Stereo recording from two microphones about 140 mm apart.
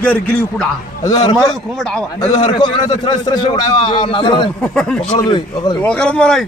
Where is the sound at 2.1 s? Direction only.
30° left (ahead or behind).